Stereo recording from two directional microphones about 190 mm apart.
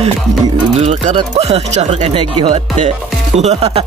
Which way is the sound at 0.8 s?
35° right (ahead or behind).